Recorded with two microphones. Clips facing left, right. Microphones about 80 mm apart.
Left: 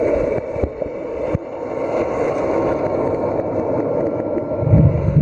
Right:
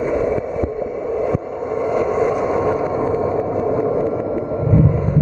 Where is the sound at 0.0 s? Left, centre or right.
Centre.